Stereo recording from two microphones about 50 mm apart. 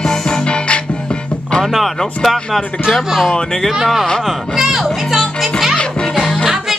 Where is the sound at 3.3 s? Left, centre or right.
Centre.